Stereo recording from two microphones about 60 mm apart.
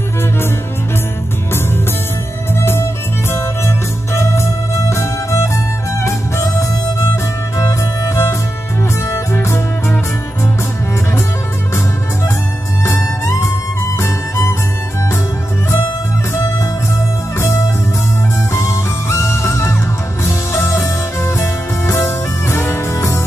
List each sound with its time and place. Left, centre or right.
2.6 s music: left
9.0 s music: left
12.8 s music: left
18.5 s music: left